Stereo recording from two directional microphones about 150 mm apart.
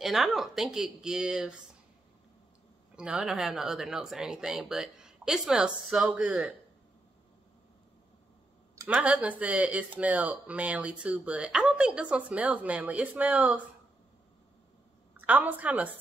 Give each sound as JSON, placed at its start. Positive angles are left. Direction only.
{"t": 0.0, "sound": "speech", "side_deg": 0}
{"t": 3.0, "sound": "speech", "side_deg": -5}
{"t": 8.8, "sound": "speech", "side_deg": -10}
{"t": 15.1, "sound": "a woman's voice", "side_deg": -10}